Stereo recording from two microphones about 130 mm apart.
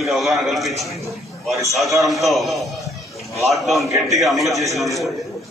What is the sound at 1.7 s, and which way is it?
A man's voice, centre (ahead or behind).